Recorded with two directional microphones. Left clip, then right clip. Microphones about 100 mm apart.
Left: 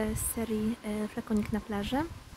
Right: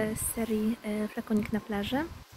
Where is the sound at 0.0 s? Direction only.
45° left (ahead or behind).